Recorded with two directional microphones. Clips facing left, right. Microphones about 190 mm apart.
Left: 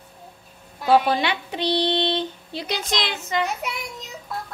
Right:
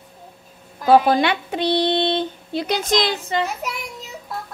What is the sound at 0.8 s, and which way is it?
Speech, 45° right (ahead or behind).